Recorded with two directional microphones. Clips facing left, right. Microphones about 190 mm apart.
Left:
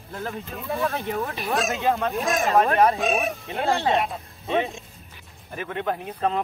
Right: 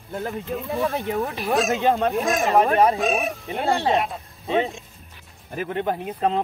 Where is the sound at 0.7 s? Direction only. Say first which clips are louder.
Right 2 dB; 15° right (ahead or behind).